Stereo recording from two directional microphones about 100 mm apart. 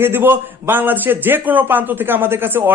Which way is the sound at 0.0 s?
20° right (ahead or behind).